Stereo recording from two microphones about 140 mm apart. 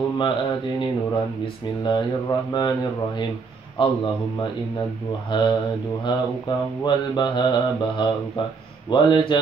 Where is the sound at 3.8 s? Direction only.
40° left (ahead or behind).